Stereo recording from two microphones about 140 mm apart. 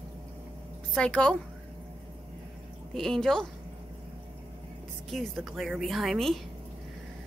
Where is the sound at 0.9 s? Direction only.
5° left (ahead or behind).